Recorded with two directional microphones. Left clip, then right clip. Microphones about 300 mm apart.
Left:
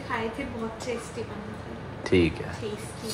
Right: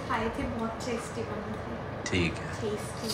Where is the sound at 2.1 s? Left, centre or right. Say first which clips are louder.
Left 8 dB; centre.